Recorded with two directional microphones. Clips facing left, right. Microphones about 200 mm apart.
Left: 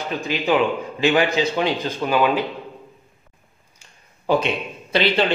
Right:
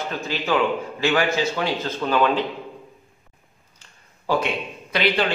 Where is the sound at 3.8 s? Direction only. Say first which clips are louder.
Left 1 dB; 15° left (ahead or behind).